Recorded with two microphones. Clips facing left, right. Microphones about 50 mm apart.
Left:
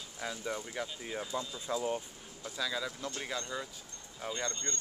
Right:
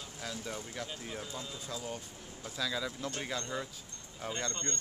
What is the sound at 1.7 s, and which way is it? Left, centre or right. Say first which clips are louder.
Speech: left 8 dB; left.